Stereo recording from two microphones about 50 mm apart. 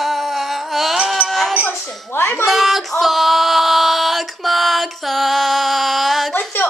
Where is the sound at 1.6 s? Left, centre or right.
Left.